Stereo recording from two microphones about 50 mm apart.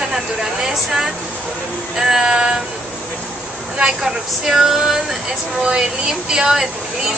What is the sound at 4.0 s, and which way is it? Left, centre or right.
A woman's voice, centre.